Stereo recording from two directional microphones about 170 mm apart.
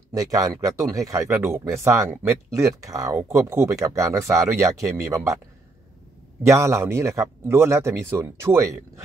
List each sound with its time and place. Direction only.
0.1 s speech: 20° right (ahead or behind)
6.4 s speech: 15° right (ahead or behind)